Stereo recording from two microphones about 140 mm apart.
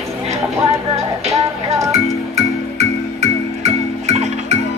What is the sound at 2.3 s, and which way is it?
Music, 50° right (ahead or behind).